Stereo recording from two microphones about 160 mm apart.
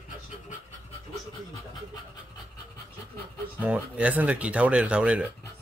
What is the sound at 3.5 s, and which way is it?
Speech, 10° right (ahead or behind).